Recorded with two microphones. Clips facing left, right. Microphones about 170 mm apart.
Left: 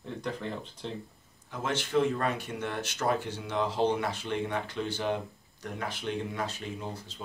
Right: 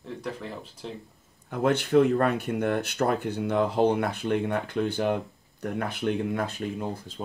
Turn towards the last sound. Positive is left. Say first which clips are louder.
# right 6 dB
turn(degrees=-55)  # may be behind; listen again after turning